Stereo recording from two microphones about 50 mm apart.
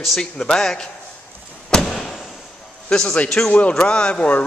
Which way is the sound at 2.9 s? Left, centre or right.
Left.